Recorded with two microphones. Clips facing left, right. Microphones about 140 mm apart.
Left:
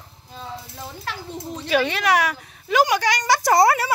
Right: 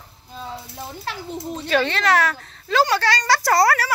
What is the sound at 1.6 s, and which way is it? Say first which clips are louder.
Speech: even; 10° left (ahead or behind).